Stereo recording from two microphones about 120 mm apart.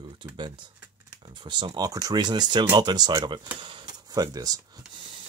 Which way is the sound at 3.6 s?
40° right (ahead or behind).